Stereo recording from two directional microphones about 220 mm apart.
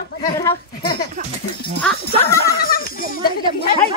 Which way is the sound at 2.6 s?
40° left (ahead or behind).